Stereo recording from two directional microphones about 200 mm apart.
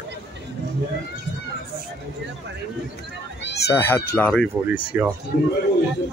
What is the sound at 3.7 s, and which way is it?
Speech, 10° left (ahead or behind).